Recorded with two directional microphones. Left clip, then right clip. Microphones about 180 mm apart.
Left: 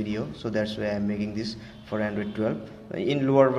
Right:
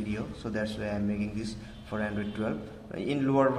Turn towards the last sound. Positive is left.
turn(degrees=20)  # may be behind; listen again after turning